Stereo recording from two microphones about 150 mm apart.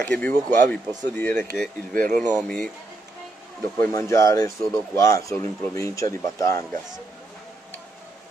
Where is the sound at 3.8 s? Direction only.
20° left (ahead or behind).